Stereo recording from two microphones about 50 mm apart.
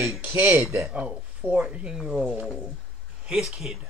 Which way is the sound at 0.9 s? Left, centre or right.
Right.